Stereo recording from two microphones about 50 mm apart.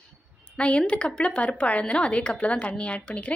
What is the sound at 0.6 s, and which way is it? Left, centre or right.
A woman's voice, left.